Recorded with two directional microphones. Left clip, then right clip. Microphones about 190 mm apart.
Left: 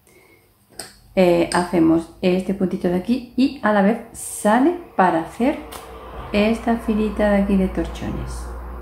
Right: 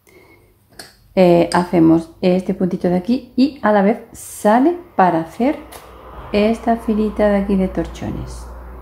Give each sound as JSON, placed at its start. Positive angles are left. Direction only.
{"t": 1.1, "sound": "speech", "side_deg": -45}